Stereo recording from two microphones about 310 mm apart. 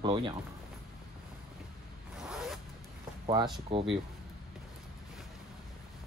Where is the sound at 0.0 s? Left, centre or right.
Centre.